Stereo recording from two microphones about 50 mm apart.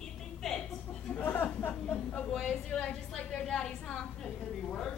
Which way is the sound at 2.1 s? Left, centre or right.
Centre.